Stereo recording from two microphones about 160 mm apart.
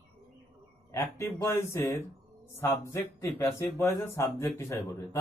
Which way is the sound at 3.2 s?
15° left (ahead or behind).